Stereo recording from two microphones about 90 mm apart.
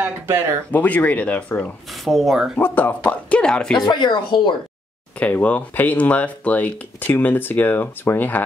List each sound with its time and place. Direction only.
0.0 s speech: 30° right (ahead or behind)
0.7 s speech: 15° left (ahead or behind)
2.0 s speech: centre (ahead or behind)
2.6 s speech: 20° left (ahead or behind)
3.8 s speech: 55° left (ahead or behind)
5.2 s speech: 15° left (ahead or behind)